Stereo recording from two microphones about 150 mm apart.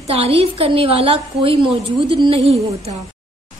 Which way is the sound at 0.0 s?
40° right (ahead or behind).